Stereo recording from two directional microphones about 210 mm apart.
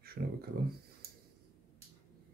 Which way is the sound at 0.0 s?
45° right (ahead or behind).